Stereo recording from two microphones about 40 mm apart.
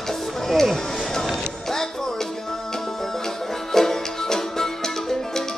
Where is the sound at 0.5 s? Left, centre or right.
Centre.